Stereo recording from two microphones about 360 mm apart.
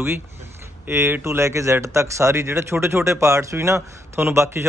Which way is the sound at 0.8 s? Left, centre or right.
Centre.